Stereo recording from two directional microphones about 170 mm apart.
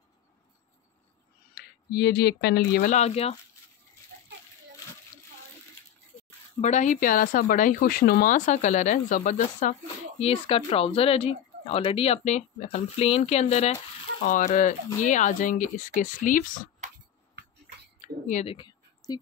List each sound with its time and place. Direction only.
1.5 s speech: 70° left (ahead or behind)
2.9 s speech: 40° left (ahead or behind)
6.6 s speech: 45° left (ahead or behind)
18.3 s a sound: 35° left (ahead or behind)